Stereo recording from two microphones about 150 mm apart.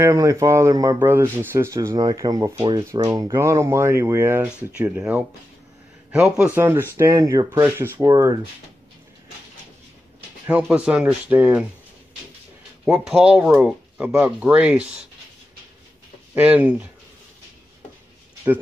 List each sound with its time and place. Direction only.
0.0 s speech: 20° right (ahead or behind)
10.4 s speech: 10° right (ahead or behind)
12.8 s speech: 5° right (ahead or behind)
16.3 s speech: 10° right (ahead or behind)